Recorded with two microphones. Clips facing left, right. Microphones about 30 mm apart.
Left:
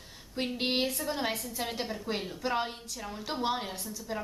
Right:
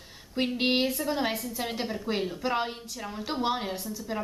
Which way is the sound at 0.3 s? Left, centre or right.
Centre.